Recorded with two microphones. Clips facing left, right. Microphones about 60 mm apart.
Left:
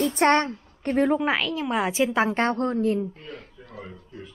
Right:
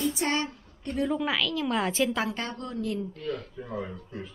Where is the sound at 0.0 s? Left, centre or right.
Left; by 2.0 s centre.